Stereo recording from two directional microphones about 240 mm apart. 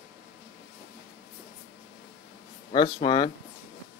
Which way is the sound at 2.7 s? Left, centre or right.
Centre.